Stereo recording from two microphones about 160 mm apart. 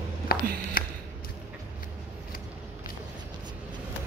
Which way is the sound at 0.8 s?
60° left (ahead or behind).